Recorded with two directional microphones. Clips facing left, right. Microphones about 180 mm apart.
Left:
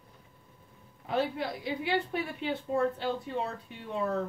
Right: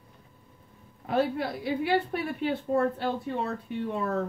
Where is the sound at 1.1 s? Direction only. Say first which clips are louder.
Right 4 dB; 55° right (ahead or behind).